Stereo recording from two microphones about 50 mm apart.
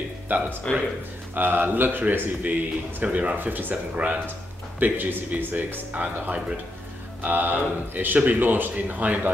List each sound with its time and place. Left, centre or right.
0.3 s speech: right
0.7 s speech: left
1.3 s speech: right